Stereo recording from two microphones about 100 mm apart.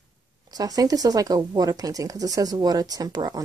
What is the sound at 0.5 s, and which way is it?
Speech, 40° right (ahead or behind).